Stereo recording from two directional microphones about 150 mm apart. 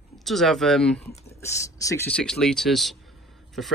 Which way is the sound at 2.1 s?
5° left (ahead or behind).